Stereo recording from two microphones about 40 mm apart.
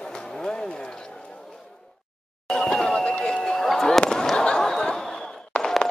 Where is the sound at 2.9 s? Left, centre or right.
Left.